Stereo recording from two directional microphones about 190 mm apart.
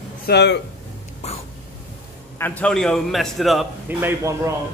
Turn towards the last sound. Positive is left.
turn(degrees=-15)  # may be behind; listen again after turning